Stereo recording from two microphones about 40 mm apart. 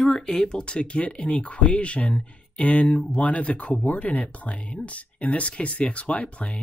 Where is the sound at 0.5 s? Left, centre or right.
Left.